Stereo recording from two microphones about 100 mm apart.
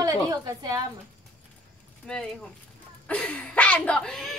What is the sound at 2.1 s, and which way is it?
A woman's voice, 10° left (ahead or behind).